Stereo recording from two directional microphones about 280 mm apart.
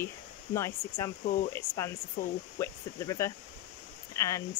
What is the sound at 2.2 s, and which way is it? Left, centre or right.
Speech, left.